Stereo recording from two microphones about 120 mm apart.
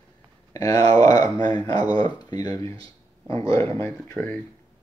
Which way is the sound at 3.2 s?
45° right (ahead or behind).